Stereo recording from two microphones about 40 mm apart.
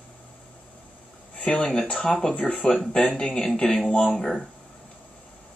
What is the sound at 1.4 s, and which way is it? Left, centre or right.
Speech, left.